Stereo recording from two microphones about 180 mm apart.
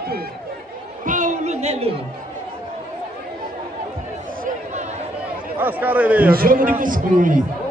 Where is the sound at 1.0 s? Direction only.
45° right (ahead or behind).